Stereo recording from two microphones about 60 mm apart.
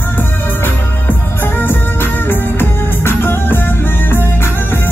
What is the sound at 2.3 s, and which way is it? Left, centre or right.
Music, left.